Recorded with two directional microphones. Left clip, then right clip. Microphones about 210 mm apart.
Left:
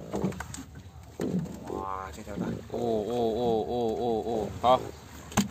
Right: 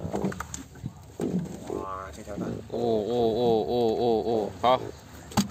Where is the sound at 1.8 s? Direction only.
20° left (ahead or behind).